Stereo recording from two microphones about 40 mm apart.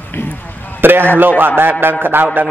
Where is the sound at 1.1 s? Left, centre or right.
Right.